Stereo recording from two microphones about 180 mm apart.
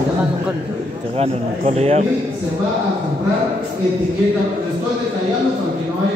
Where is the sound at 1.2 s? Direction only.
35° right (ahead or behind).